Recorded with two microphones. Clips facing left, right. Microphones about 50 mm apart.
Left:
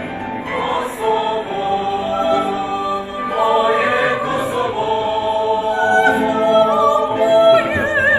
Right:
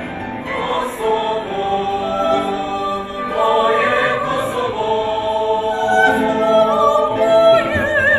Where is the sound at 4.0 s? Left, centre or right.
Left.